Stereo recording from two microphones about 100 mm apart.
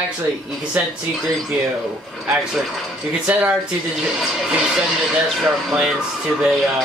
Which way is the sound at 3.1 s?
10° right (ahead or behind).